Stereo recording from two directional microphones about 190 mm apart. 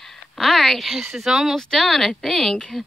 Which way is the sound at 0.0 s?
Centre (ahead or behind).